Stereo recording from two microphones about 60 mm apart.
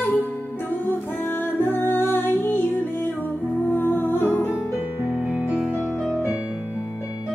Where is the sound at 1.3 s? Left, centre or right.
Left.